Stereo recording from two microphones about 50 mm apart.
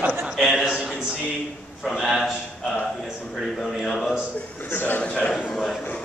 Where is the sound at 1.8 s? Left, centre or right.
Centre.